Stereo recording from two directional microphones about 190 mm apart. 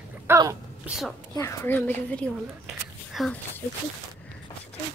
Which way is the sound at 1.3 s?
15° left (ahead or behind).